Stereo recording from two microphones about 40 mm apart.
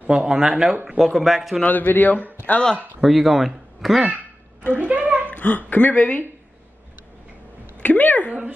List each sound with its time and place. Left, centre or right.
0.1 s speech: centre
0.9 s speech: centre
1.7 s speech: left
3.0 s speech: centre
4.7 s a sound: right
5.3 s speech: left
7.8 s a sound: left
8.3 s speech: right